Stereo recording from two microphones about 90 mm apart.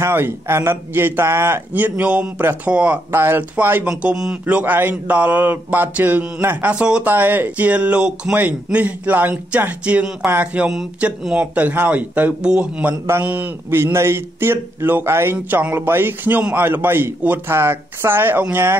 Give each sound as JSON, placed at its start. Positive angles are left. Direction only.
{"t": 0.0, "sound": "speech", "side_deg": -25}